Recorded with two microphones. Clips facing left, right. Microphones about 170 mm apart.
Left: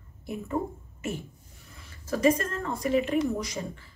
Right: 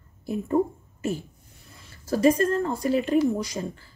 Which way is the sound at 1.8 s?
35° right (ahead or behind).